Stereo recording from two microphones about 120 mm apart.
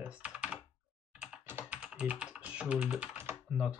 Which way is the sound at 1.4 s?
15° right (ahead or behind).